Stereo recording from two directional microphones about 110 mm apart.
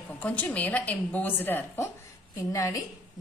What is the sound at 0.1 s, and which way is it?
A woman's voice, 15° left (ahead or behind).